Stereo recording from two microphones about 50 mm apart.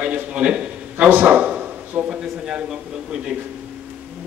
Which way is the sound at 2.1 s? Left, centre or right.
Centre.